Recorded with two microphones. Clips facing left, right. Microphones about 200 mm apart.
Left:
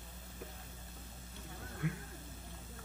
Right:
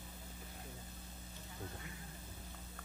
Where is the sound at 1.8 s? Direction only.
65° left (ahead or behind).